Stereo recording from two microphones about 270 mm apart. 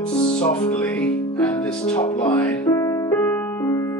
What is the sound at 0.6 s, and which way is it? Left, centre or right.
Music, centre.